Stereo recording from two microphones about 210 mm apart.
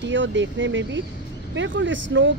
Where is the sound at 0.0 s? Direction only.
60° right (ahead or behind).